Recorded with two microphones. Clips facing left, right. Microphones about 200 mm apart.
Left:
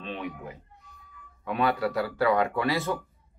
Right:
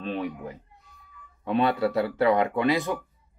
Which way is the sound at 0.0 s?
40° right (ahead or behind).